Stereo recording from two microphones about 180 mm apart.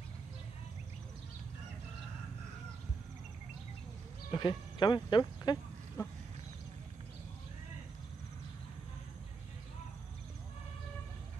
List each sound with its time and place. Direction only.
4.3 s speech: 25° left (ahead or behind)